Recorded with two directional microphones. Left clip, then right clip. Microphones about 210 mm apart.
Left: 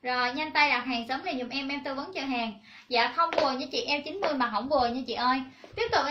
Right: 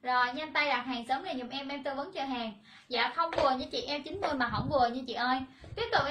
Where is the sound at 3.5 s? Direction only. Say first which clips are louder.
Left 5 dB; 15° right (ahead or behind).